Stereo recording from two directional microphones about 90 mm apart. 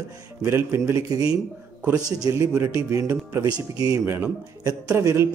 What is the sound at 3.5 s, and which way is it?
Speech, 45° right (ahead or behind).